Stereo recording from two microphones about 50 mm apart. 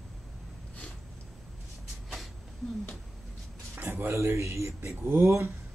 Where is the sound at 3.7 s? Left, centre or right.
Right.